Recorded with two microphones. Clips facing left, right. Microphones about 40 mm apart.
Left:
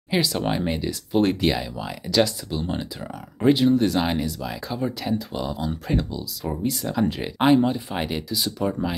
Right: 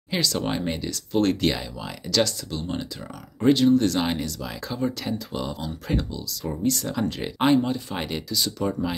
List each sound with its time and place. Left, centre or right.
0.1 s speech: centre